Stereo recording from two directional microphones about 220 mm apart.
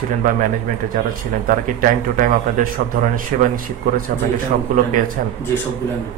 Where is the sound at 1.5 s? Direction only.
35° right (ahead or behind).